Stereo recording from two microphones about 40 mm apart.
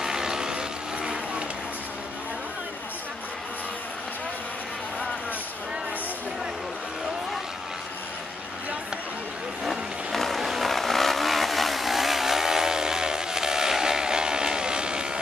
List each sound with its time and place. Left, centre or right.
0.0 s vehicle: centre
10.1 s a sound: centre
10.7 s vehicle: centre; by 15.0 s right